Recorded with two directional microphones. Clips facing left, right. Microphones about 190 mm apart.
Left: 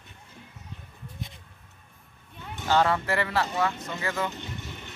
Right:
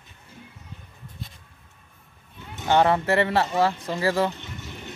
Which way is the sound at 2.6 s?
20° right (ahead or behind).